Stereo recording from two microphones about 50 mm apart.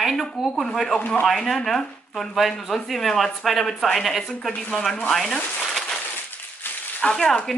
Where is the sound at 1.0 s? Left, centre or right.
Left.